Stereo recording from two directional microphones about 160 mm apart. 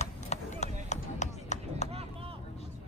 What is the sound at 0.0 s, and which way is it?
Run, 45° left (ahead or behind).